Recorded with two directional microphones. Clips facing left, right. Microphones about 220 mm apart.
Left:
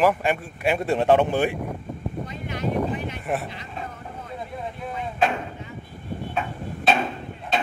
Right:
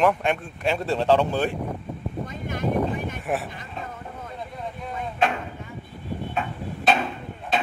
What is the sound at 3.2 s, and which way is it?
Speech, centre (ahead or behind).